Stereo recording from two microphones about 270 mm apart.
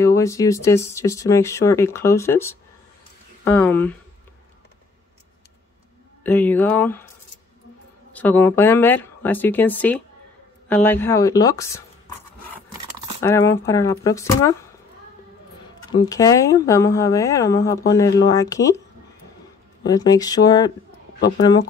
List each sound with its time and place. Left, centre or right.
0.0 s speech: centre
6.2 s speech: centre
8.1 s speech: centre
13.2 s speech: centre
15.9 s speech: centre
19.8 s speech: centre